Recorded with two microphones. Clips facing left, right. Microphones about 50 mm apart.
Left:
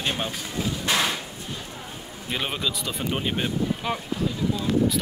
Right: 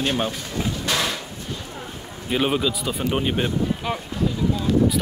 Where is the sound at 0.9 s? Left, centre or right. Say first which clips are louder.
Left 1 dB; left.